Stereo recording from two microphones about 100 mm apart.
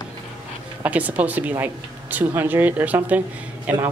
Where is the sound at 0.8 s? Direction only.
15° right (ahead or behind).